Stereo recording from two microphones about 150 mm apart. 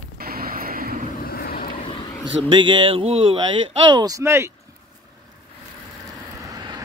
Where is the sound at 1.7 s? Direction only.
35° left (ahead or behind).